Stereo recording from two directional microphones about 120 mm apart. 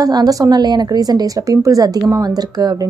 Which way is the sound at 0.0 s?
30° right (ahead or behind).